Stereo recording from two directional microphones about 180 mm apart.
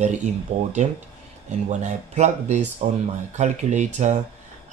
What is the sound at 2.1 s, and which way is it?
Speech, 40° right (ahead or behind).